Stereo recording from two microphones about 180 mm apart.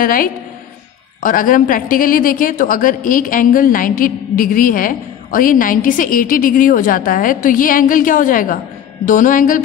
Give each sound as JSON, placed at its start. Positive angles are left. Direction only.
{"t": 0.0, "sound": "speech", "side_deg": 50}